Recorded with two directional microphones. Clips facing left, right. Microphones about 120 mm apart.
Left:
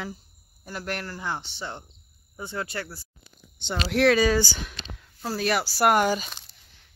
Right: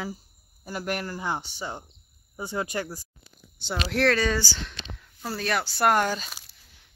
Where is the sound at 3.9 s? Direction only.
5° left (ahead or behind).